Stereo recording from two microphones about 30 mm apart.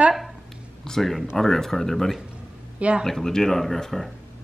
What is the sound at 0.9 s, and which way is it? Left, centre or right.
Speech, left.